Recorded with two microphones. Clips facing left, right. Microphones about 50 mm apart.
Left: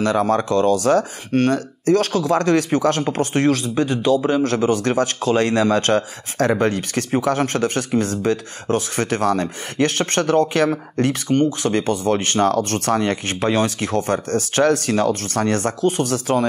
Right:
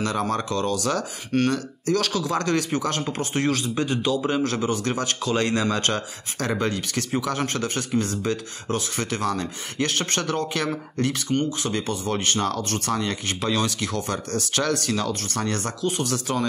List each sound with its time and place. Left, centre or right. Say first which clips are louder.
0.0 s speech: left 7 dB; left